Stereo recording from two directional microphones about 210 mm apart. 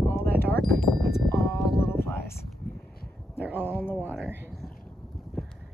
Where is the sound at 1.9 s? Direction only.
10° left (ahead or behind).